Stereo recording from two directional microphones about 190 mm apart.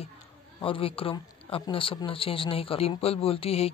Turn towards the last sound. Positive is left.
turn(degrees=30)  # may be behind; listen again after turning